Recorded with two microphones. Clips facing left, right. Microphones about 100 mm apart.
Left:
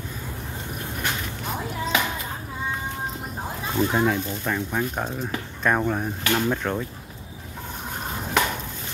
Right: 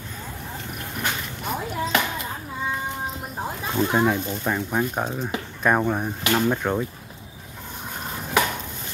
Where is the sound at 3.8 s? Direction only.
10° right (ahead or behind).